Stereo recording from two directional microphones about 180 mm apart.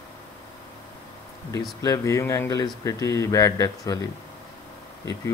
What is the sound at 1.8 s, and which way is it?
Speech, 15° left (ahead or behind).